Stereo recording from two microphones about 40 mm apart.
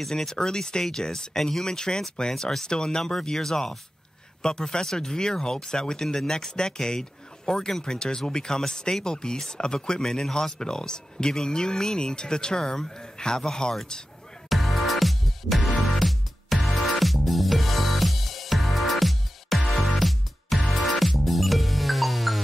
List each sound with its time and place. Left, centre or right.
0.1 s speech: centre
14.5 s music: centre